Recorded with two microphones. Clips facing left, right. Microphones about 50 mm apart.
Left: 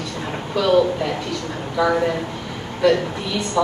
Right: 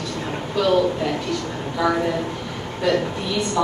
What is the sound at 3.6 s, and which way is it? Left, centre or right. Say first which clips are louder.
Speech: left 3 dB; centre.